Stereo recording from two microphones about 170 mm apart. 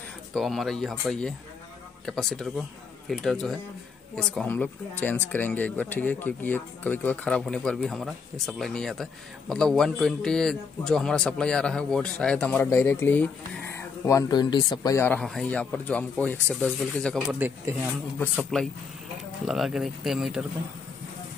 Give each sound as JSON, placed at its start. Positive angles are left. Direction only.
{"t": 0.3, "sound": "speech", "side_deg": 0}
{"t": 15.1, "sound": "speech", "side_deg": 5}
{"t": 17.4, "sound": "speech", "side_deg": -10}
{"t": 18.4, "sound": "speech", "side_deg": 0}